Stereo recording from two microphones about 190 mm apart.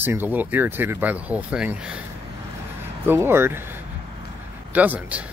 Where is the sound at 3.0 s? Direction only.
10° right (ahead or behind).